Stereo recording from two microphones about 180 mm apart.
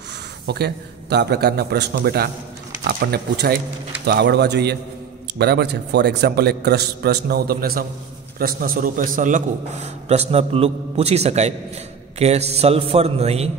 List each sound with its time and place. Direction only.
0.5 s a man's voice: 65° right (ahead or behind); by 13.5 s 35° right (ahead or behind)